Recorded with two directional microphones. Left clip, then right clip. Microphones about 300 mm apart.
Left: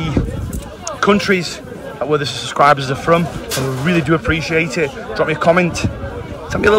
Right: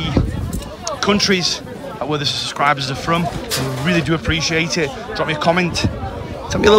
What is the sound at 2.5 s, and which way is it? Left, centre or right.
A man's voice, centre.